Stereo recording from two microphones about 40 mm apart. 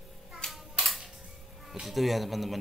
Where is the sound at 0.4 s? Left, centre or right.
Centre.